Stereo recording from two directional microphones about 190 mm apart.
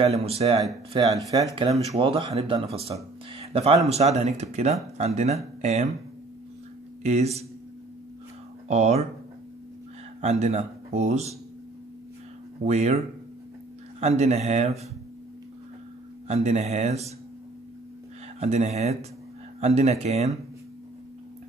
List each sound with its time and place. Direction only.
0.0 s speech: 30° right (ahead or behind)
7.0 s speech: 35° right (ahead or behind)
8.6 s speech: 35° right (ahead or behind)
10.2 s speech: 35° right (ahead or behind)
12.6 s speech: 35° right (ahead or behind)
16.3 s speech: 35° right (ahead or behind)
18.4 s speech: 35° right (ahead or behind)